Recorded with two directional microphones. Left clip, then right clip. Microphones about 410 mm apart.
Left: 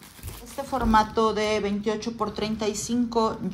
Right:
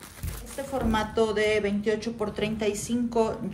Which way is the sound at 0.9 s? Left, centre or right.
Centre.